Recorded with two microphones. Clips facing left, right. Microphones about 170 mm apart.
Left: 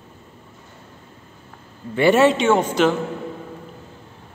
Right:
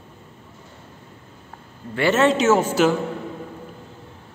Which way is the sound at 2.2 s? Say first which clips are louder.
Even; 5° right (ahead or behind).